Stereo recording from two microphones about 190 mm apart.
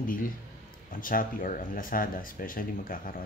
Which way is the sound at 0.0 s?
45° left (ahead or behind).